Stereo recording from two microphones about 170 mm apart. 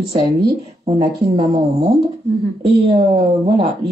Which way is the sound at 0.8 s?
35° right (ahead or behind).